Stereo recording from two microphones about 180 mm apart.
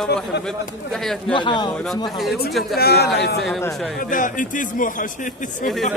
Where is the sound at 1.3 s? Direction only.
25° left (ahead or behind).